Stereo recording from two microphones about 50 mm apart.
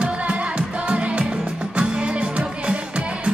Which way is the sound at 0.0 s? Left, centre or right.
Right.